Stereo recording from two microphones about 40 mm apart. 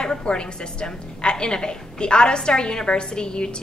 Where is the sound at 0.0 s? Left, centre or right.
Left.